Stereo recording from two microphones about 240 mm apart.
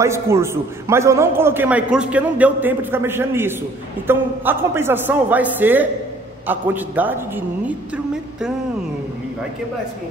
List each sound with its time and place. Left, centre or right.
0.0 s a man's voice: centre